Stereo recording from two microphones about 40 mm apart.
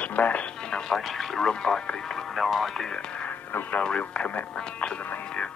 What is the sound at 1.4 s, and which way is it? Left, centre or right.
Speech, centre.